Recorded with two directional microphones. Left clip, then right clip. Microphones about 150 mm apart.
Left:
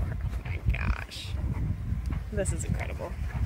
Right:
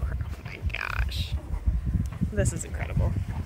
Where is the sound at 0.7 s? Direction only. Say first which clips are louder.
Right 5 dB; centre (ahead or behind).